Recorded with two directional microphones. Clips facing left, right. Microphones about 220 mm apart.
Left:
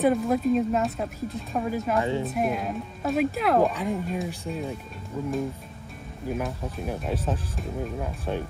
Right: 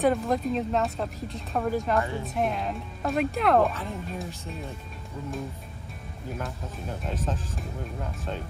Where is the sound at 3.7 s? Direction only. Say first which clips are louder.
Left 7 dB; 15° left (ahead or behind).